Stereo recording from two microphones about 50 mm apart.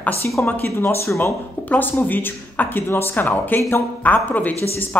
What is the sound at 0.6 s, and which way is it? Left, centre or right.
Speech, left.